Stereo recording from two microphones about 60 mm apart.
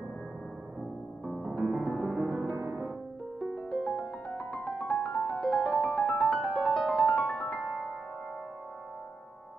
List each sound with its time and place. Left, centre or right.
1.2 s music: centre
1.6 s music: centre
3.8 s music: centre
7.6 s music: centre